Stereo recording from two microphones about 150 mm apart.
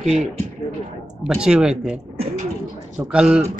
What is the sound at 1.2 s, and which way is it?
Speech, 5° right (ahead or behind).